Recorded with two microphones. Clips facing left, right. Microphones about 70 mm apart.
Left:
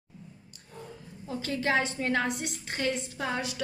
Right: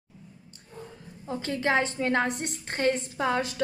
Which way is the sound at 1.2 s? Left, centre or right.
Right.